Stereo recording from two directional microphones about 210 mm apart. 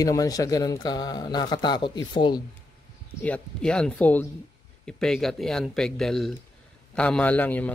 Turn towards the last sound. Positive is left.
turn(degrees=10)  # may be behind; listen again after turning